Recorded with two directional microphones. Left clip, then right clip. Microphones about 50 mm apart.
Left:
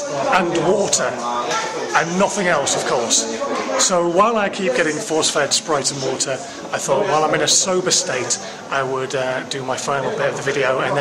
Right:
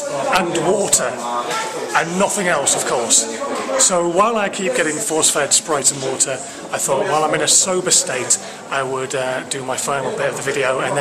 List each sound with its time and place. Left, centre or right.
0.3 s a man's voice: centre